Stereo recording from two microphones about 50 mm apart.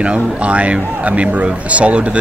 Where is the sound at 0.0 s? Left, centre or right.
Right.